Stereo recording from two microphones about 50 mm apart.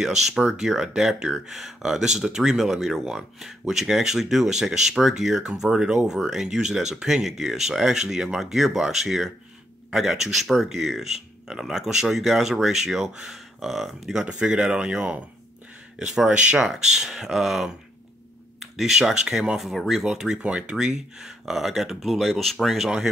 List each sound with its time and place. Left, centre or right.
0.0 s speech: centre
14.2 s speech: right; by 22.8 s centre